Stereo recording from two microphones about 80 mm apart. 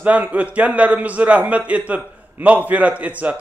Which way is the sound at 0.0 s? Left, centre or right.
Centre.